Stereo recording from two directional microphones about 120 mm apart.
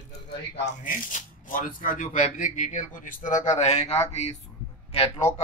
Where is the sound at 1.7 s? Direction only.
90° left; by 5.3 s 65° left (ahead or behind).